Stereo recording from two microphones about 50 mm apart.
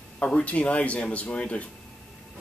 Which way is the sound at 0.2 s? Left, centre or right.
Left.